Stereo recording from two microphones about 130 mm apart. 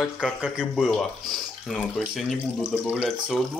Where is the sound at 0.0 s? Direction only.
5° right (ahead or behind).